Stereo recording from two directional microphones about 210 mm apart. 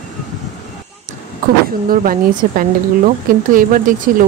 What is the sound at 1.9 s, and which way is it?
Speech, 40° right (ahead or behind).